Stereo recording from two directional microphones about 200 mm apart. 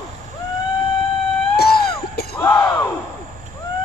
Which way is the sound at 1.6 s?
50° left (ahead or behind).